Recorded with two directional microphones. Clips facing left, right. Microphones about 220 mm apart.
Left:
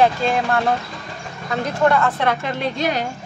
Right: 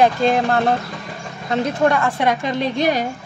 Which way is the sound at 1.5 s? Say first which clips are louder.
Right 1 dB; 15° right (ahead or behind).